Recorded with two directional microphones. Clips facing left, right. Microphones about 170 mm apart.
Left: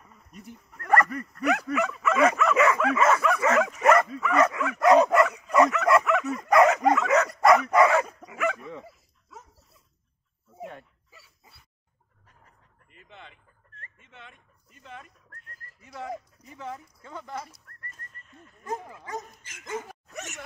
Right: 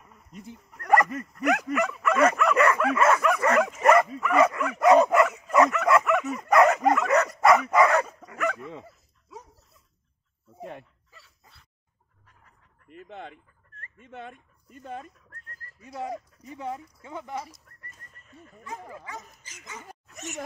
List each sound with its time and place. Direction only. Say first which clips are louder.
0.7 s speech: right 2 dB; 15° right (ahead or behind)
1.7 s dog: right 1 dB; centre (ahead or behind)
3.8 s dog: right 1 dB; 10° right (ahead or behind)
10.6 s a sound: right 1 dB; 10° left (ahead or behind)
12.8 s chicken: right 9 dB; 50° right (ahead or behind)
16.0 s a sound: right 2 dB; 20° right (ahead or behind)
18.6 s dog: left 5 dB; 45° left (ahead or behind)